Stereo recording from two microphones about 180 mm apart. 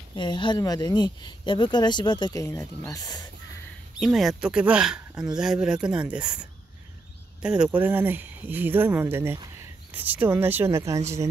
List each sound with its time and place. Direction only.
0.1 s speech: 25° left (ahead or behind)
4.0 s speech: centre (ahead or behind)
7.4 s speech: 5° right (ahead or behind)